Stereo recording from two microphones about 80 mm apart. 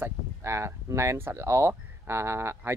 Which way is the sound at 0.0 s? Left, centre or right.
Right.